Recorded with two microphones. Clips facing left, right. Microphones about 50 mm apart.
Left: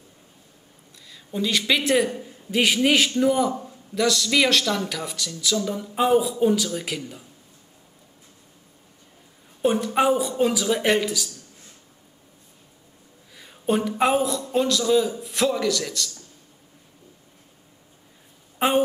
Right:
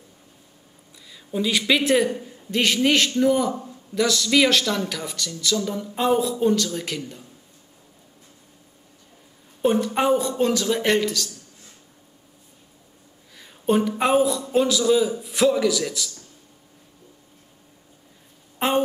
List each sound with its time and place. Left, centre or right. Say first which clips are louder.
1.0 s a man's voice: right 2 dB; centre
9.6 s a man's voice: even; centre
13.3 s a man's voice: right 2 dB; centre
18.6 s a woman's voice: left 1 dB; centre